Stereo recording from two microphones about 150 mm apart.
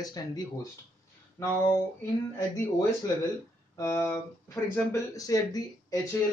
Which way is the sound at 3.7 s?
20° left (ahead or behind).